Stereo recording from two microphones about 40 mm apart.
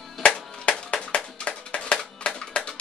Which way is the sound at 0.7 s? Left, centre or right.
Left.